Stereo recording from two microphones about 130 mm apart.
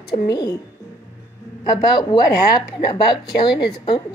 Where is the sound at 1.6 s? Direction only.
35° left (ahead or behind).